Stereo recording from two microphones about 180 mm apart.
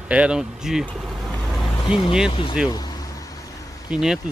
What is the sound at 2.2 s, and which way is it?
Speech, 30° left (ahead or behind).